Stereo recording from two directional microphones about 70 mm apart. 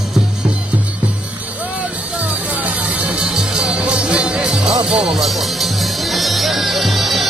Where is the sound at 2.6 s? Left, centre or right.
Centre.